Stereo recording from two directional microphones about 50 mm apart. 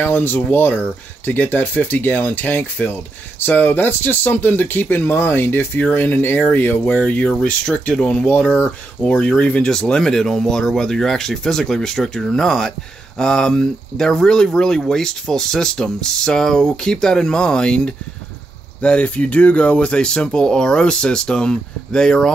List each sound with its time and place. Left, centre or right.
0.0 s speech: left
7.1 s speech: left
7.6 s speech: centre
9.6 s speech: centre